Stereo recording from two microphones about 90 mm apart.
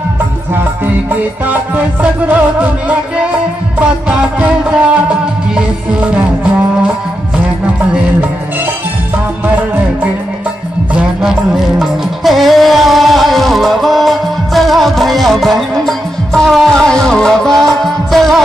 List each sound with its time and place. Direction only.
1.4 s music: 20° right (ahead or behind)
4.1 s music: 15° right (ahead or behind)
10.9 s music: 10° right (ahead or behind)